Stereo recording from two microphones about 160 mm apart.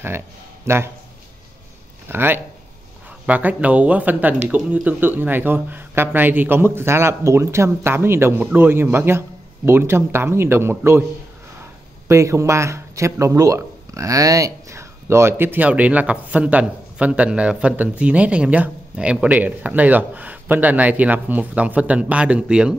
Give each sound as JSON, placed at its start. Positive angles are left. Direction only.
{"t": 0.7, "sound": "speech", "side_deg": -15}
{"t": 2.0, "sound": "speech", "side_deg": -15}
{"t": 12.1, "sound": "speech", "side_deg": -20}